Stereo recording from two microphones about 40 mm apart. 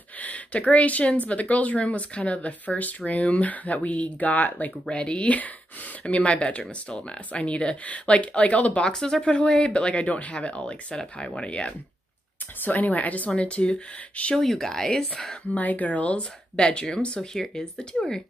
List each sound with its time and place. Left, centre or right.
0.2 s speech: left
4.8 s speech: left
8.9 s speech: centre
12.6 s speech: left
13.4 s speech: left
14.3 s speech: centre
15.5 s speech: left; by 18.2 s centre